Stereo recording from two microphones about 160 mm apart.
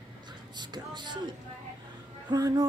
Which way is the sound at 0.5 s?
25° right (ahead or behind).